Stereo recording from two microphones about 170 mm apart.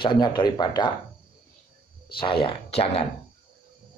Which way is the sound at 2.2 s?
30° left (ahead or behind).